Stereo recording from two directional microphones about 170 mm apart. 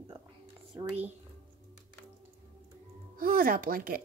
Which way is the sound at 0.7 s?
30° right (ahead or behind).